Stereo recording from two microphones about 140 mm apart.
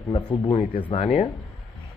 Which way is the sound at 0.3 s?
35° left (ahead or behind).